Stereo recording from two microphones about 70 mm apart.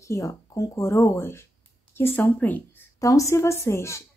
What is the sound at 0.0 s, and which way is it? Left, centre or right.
A woman's voice, left.